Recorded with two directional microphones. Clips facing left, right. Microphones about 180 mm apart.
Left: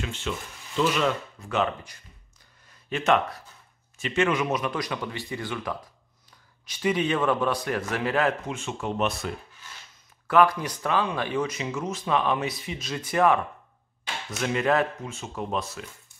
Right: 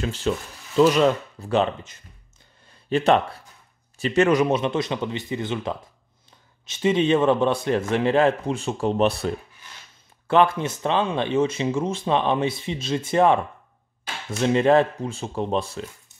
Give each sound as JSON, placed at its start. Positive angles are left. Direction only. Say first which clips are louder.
{"t": 0.0, "sound": "speech", "louder": "right 7 dB", "side_deg": -35}
{"t": 14.4, "sound": "speech", "louder": "right 6 dB", "side_deg": -30}